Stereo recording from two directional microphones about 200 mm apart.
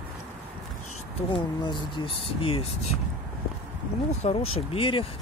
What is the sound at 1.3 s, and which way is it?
Speech, 25° left (ahead or behind).